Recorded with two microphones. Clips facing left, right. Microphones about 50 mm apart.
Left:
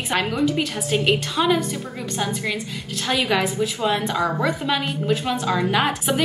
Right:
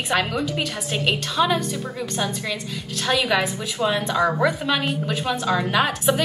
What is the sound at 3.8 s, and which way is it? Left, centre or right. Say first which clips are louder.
Speech: right 1 dB; centre.